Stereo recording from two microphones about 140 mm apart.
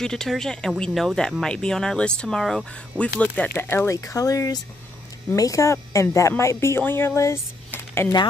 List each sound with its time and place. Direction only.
0.0 s a woman's voice: 5° left (ahead or behind)